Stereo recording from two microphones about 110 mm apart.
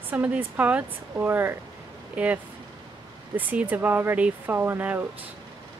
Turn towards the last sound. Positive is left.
turn(degrees=-15)  # may be behind; listen again after turning